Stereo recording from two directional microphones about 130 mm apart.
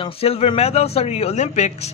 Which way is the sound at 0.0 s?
50° left (ahead or behind).